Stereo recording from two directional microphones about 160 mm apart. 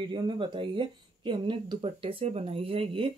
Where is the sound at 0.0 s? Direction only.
30° right (ahead or behind).